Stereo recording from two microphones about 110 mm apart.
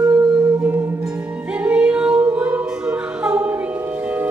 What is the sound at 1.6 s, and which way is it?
Music, 10° right (ahead or behind).